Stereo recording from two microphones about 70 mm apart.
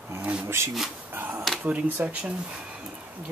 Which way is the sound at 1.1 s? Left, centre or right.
Right.